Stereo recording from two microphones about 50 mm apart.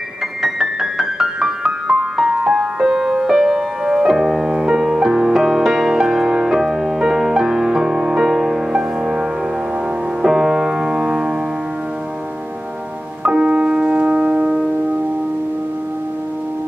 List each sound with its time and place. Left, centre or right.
0.4 s music: centre
10.2 s music: centre
13.2 s music: centre